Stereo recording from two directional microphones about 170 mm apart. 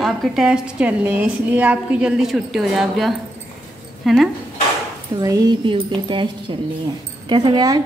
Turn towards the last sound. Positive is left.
turn(degrees=-25)  # may be behind; listen again after turning